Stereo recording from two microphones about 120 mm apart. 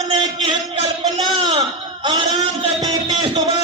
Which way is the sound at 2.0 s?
40° right (ahead or behind).